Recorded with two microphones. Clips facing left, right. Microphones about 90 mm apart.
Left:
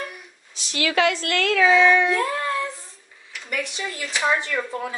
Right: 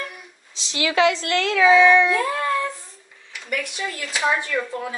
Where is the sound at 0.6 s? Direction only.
25° right (ahead or behind).